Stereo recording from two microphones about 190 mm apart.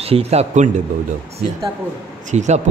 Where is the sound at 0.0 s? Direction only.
30° right (ahead or behind).